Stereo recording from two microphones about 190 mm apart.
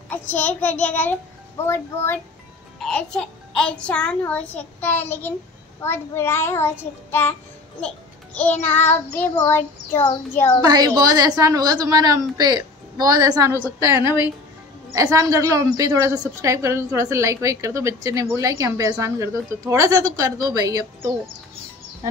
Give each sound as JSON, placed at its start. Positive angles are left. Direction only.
{"t": 0.1, "sound": "child singing", "side_deg": 10}
{"t": 2.8, "sound": "a child's voice", "side_deg": 5}
{"t": 4.7, "sound": "child singing", "side_deg": 10}
{"t": 7.8, "sound": "babbling", "side_deg": 5}
{"t": 8.6, "sound": "child singing", "side_deg": 10}
{"t": 10.6, "sound": "a woman's voice", "side_deg": -20}